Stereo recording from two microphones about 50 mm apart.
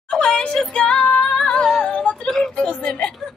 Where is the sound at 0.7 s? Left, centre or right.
Centre.